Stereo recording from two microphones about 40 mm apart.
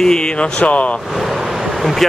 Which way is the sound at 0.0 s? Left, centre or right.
Centre.